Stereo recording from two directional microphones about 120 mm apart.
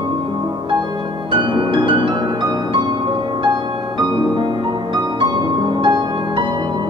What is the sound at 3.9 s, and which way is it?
Music, 40° right (ahead or behind).